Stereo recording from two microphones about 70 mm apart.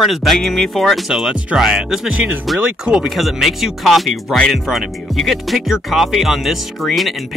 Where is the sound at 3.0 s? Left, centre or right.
Centre.